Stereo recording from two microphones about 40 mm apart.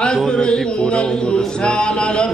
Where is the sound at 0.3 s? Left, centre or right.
Left.